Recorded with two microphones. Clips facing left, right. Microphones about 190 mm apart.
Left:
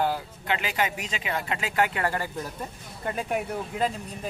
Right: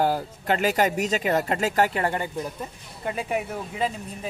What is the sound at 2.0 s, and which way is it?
Speech, 20° right (ahead or behind).